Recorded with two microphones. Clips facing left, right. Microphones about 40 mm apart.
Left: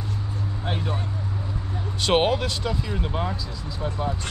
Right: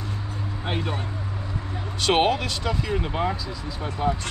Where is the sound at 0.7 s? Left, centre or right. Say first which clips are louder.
Right 1 dB; right.